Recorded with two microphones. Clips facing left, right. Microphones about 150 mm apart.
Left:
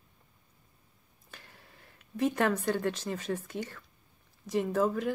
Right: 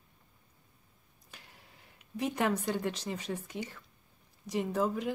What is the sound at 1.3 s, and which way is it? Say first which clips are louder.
Speech: left 2 dB; 15° right (ahead or behind).